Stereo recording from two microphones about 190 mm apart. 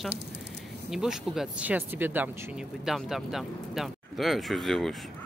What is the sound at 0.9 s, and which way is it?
Speech, centre (ahead or behind).